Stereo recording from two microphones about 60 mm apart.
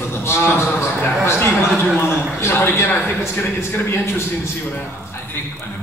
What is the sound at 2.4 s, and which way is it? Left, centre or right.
A man's voice, left.